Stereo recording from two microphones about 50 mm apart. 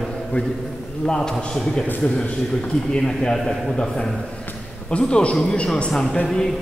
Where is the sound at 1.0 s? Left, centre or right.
Centre.